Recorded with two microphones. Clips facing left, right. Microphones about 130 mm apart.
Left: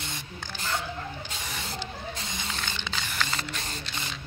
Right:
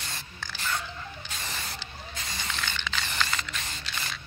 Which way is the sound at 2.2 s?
20° left (ahead or behind).